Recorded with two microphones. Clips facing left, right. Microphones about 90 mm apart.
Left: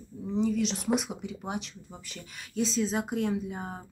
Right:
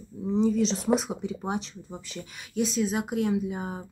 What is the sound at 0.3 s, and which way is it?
Speech, 30° right (ahead or behind).